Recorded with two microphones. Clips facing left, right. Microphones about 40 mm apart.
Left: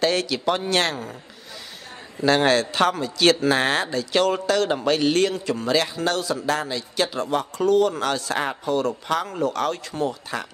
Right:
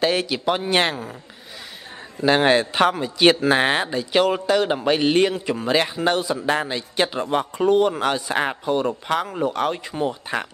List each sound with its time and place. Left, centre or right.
0.0 s speech: centre
2.2 s a man's voice: centre